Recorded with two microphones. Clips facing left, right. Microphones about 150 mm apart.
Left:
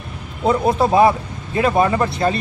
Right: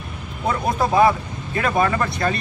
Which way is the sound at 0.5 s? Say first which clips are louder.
Left 5 dB; 25° left (ahead or behind).